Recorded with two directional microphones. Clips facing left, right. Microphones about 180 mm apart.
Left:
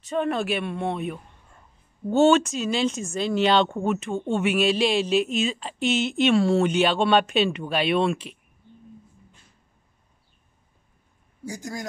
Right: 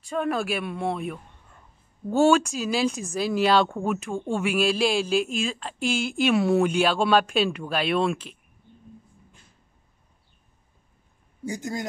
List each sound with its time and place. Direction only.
0.1 s speech: centre (ahead or behind)
11.4 s speech: 20° right (ahead or behind)